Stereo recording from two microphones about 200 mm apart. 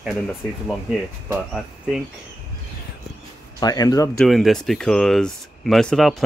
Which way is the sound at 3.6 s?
20° left (ahead or behind).